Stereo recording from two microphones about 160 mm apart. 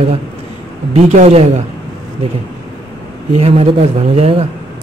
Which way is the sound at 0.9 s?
40° right (ahead or behind).